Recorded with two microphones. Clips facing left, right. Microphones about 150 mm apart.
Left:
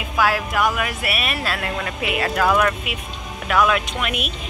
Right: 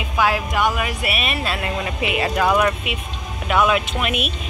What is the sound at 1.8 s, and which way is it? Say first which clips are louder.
Speech: right 1 dB; 15° right (ahead or behind).